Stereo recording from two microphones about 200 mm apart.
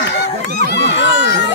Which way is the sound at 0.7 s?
65° left (ahead or behind).